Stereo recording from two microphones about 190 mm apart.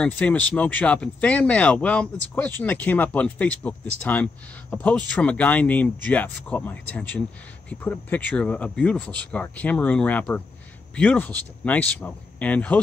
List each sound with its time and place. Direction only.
0.0 s speech: 5° left (ahead or behind)